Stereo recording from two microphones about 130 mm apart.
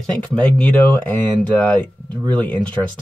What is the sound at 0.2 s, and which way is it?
Speech, 10° left (ahead or behind).